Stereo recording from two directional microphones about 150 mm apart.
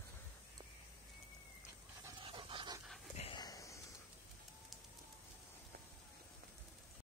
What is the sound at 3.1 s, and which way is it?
Dog, 40° left (ahead or behind).